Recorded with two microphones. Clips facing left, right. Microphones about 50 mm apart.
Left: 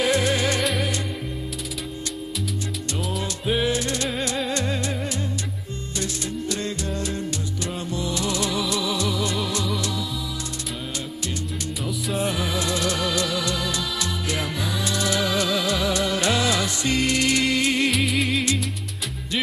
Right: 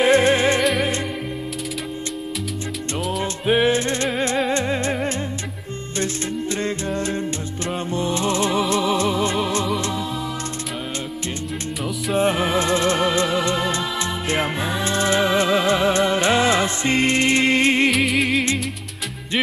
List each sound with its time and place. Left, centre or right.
0.0 s music: right
3.4 s music: right
7.0 s music: right
12.1 s music: right
17.9 s music: centre